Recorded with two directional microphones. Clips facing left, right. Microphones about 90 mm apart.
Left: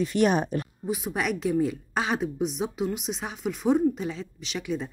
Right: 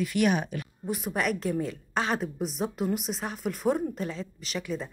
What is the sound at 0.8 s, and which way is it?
A woman's voice, centre (ahead or behind).